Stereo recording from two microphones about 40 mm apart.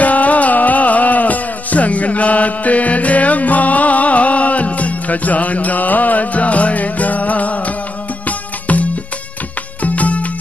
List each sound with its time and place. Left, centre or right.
0.0 s music: left